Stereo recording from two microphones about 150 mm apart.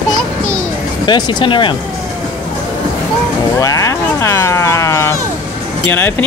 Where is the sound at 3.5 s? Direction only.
20° left (ahead or behind).